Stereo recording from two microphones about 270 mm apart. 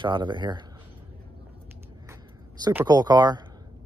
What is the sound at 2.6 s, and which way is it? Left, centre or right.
Speech, centre.